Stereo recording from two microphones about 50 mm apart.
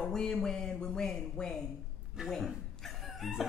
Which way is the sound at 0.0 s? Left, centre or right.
Centre.